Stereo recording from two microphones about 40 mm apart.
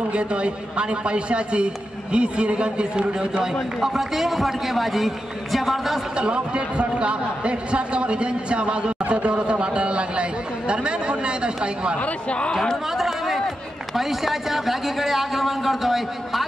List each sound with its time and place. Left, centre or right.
0.1 s a man's voice: right
3.8 s speech: centre
6.1 s a man's voice: right
12.3 s speech: left
12.9 s a sound: centre
13.9 s speech: centre